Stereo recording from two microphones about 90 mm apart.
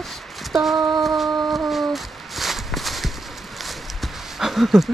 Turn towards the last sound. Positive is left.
turn(degrees=0)  # may be behind; listen again after turning